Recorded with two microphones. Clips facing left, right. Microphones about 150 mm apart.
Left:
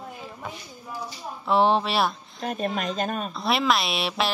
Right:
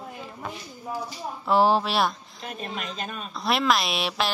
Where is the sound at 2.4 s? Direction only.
45° left (ahead or behind).